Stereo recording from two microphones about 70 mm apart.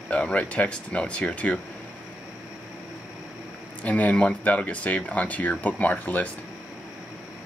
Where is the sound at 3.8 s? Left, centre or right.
Left.